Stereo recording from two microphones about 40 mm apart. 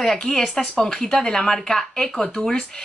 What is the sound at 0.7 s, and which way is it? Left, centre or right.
Speech, centre.